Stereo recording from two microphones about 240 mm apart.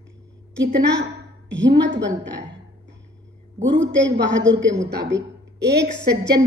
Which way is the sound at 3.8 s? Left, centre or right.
Right.